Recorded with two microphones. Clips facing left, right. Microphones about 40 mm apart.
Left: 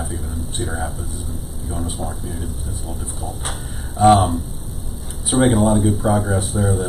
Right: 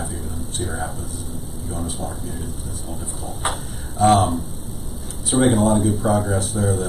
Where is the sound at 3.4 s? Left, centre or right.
Centre.